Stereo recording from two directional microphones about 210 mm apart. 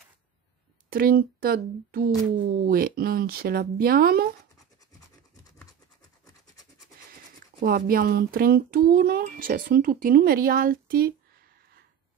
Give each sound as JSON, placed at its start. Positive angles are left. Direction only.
{"t": 0.9, "sound": "speech", "side_deg": -45}
{"t": 7.6, "sound": "speech", "side_deg": -45}